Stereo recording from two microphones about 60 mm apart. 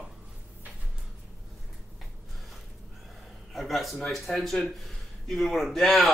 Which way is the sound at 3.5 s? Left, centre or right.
Centre.